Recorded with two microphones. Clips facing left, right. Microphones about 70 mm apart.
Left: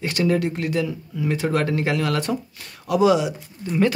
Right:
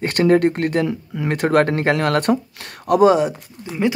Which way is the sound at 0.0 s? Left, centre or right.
Right.